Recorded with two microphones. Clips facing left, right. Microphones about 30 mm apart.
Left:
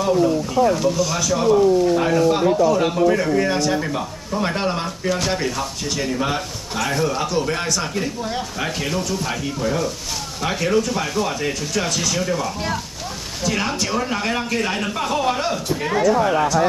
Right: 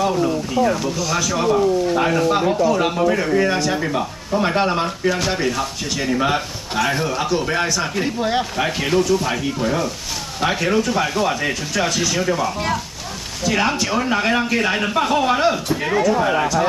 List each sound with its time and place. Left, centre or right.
0.0 s a man's voice: centre
7.9 s speech: right
8.5 s a man's voice: centre